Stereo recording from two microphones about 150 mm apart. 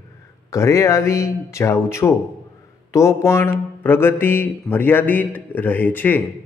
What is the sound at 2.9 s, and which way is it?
Mantra, 20° left (ahead or behind).